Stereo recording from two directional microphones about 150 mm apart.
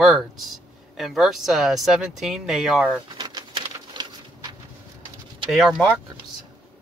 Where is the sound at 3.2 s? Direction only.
30° right (ahead or behind).